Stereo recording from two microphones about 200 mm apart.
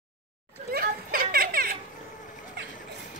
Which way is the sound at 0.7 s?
45° right (ahead or behind).